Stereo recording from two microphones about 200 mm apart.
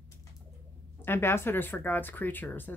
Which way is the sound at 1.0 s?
10° left (ahead or behind).